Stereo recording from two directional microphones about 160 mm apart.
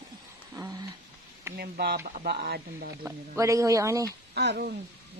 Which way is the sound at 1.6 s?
75° right (ahead or behind).